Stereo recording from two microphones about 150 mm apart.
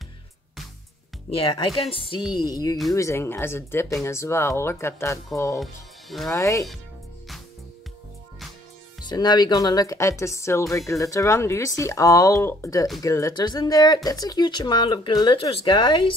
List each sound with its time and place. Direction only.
1.8 s speech: 35° left (ahead or behind)
2.4 s speech: 25° left (ahead or behind)
5.6 s speech: centre (ahead or behind)
6.3 s speech: 20° left (ahead or behind)
9.0 s speech: 30° left (ahead or behind)